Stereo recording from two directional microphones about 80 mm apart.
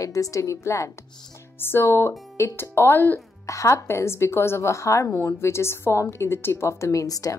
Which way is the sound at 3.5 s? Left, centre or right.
Left.